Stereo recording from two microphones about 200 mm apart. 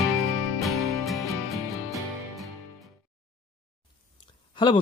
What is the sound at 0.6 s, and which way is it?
Music, centre (ahead or behind).